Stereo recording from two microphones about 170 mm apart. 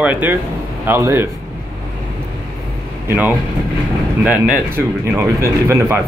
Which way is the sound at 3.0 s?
10° right (ahead or behind).